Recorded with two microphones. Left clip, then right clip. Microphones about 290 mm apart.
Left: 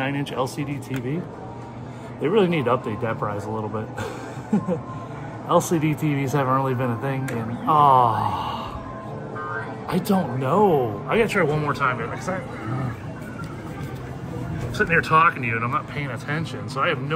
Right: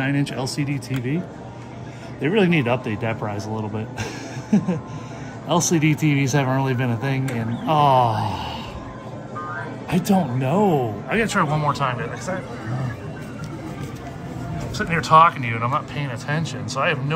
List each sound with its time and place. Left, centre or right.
0.0 s speech: centre
2.2 s speech: centre
4.0 s a sound: centre
5.5 s speech: centre
10.0 s speech: centre
14.8 s speech: centre